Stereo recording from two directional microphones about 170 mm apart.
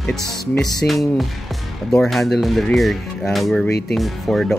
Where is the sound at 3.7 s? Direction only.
70° left (ahead or behind).